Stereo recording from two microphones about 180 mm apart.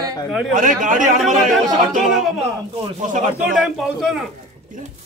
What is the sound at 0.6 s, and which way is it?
Speech, 45° right (ahead or behind).